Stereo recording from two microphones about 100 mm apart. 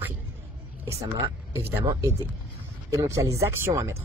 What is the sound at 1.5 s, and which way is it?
Speech, 25° right (ahead or behind).